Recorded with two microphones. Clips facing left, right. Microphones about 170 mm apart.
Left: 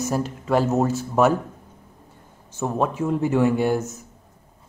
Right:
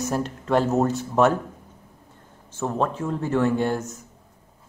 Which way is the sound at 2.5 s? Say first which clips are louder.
Left 2 dB; 10° left (ahead or behind).